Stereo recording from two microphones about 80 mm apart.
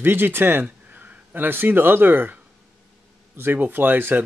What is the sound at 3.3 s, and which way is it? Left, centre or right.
Speech, right.